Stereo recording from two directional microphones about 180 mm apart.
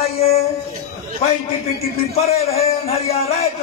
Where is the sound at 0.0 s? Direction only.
35° left (ahead or behind).